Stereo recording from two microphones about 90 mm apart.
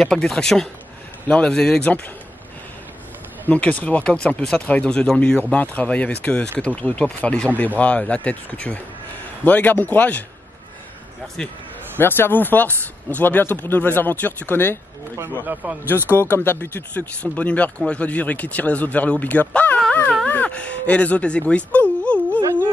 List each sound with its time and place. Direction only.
0.0 s speech: 5° left (ahead or behind)
3.4 s speech: 15° left (ahead or behind)
12.0 s speech: 25° left (ahead or behind)
16.2 s speech: 20° left (ahead or behind)
19.9 s a sound: 15° left (ahead or behind)
20.2 s speech: 15° left (ahead or behind)
22.0 s a sound: 15° left (ahead or behind)